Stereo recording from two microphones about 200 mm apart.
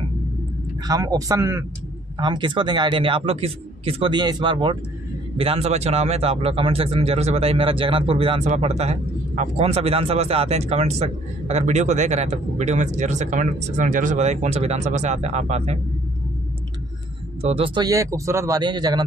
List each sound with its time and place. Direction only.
0.8 s a man's voice: 15° right (ahead or behind); by 15.8 s 35° right (ahead or behind)
17.4 s a man's voice: 30° right (ahead or behind)